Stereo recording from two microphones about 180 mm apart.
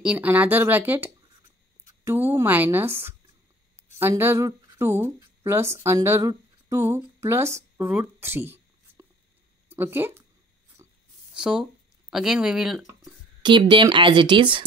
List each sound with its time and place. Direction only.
0.0 s speech: 5° right (ahead or behind)
10.8 s a sound: 15° right (ahead or behind)
11.3 s speech: 5° right (ahead or behind)
13.4 s a woman's voice: 25° right (ahead or behind)